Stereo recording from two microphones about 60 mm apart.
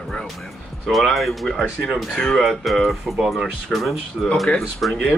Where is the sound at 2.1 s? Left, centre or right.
Centre.